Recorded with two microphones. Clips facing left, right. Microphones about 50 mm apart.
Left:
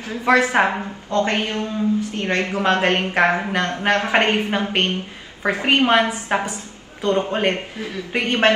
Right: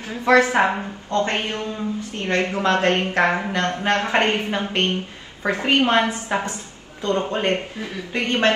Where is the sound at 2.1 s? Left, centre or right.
Left.